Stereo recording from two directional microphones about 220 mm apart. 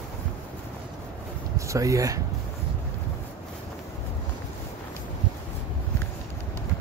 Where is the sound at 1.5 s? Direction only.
15° right (ahead or behind).